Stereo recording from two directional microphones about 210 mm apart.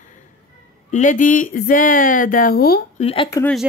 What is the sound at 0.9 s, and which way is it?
A woman's voice, 35° left (ahead or behind).